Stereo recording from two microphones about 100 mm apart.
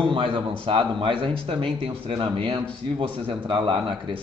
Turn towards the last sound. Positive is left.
turn(degrees=-60)  # may be behind; listen again after turning